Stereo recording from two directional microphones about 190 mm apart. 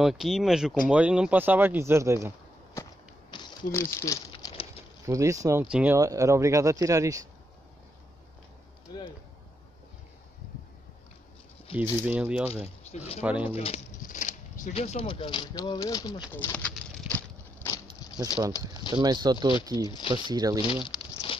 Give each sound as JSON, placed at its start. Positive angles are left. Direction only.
{"t": 0.0, "sound": "speech", "side_deg": 0}
{"t": 2.7, "sound": "a sound", "side_deg": 20}
{"t": 3.9, "sound": "speech", "side_deg": 15}
{"t": 4.3, "sound": "patter", "side_deg": 30}
{"t": 5.0, "sound": "speech", "side_deg": -15}
{"t": 11.7, "sound": "speech", "side_deg": -10}
{"t": 12.9, "sound": "speech", "side_deg": 35}
{"t": 13.2, "sound": "speech", "side_deg": -5}
{"t": 13.5, "sound": "speech", "side_deg": 30}
{"t": 14.0, "sound": "speech", "side_deg": 40}
{"t": 16.3, "sound": "pigeon", "side_deg": 10}
{"t": 18.9, "sound": "speech", "side_deg": -20}
{"t": 20.6, "sound": "a sound", "side_deg": 25}